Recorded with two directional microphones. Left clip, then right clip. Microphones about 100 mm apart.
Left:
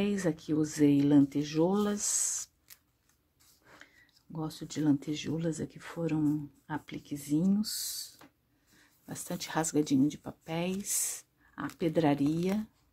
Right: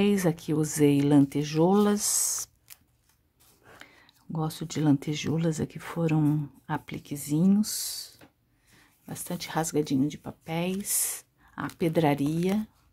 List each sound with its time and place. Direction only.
0.0 s speech: 45° right (ahead or behind)
3.8 s speech: 45° right (ahead or behind)
6.3 s speech: 40° right (ahead or behind)
7.8 s speech: 10° right (ahead or behind)
11.8 s speech: 25° right (ahead or behind)